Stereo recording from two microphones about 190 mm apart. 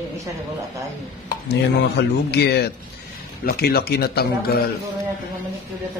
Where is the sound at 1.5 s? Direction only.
60° left (ahead or behind).